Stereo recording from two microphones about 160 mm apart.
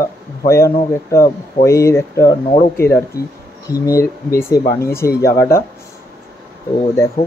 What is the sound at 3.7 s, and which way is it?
Speech, 20° left (ahead or behind).